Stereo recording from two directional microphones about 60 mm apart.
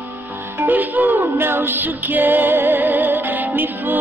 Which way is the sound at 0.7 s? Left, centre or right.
Right.